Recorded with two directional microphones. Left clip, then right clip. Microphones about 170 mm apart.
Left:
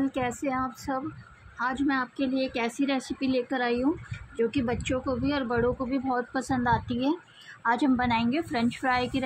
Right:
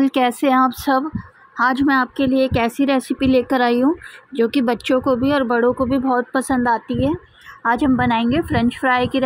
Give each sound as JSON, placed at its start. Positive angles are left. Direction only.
{"t": 0.0, "sound": "a woman's voice", "side_deg": -60}